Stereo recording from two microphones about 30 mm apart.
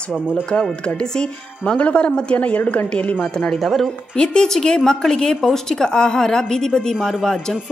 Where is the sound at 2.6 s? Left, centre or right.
Left.